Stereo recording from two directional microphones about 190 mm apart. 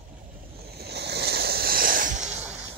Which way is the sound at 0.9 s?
60° right (ahead or behind).